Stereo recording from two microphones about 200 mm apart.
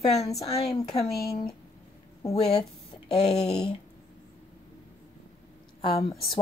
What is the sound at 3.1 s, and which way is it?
Speech, 30° left (ahead or behind).